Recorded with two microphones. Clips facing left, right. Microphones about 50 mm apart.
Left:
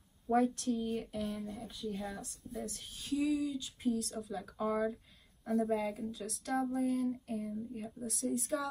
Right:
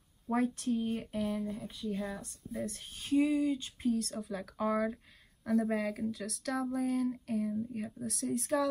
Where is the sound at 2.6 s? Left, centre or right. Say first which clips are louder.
Right 3 dB; right.